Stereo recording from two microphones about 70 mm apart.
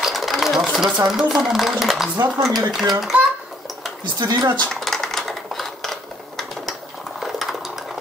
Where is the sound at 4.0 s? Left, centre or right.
Right.